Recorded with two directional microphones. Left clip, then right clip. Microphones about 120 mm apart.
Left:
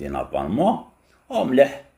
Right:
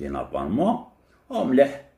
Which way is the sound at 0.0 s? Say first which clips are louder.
Left 3 dB; 20° left (ahead or behind).